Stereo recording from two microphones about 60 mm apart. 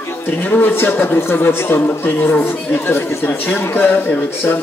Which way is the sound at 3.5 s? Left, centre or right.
Left.